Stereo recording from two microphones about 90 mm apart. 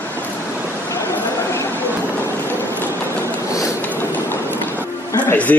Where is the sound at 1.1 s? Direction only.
30° left (ahead or behind).